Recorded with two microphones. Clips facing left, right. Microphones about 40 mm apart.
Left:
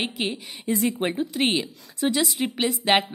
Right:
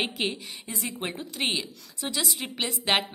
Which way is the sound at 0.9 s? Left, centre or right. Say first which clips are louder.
Left 8 dB; centre.